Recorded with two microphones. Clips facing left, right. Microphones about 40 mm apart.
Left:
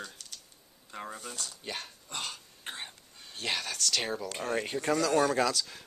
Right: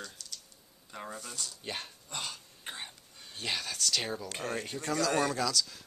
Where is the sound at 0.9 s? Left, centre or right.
Centre.